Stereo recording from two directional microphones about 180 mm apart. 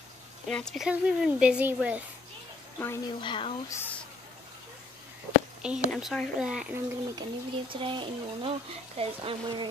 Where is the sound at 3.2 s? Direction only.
30° left (ahead or behind).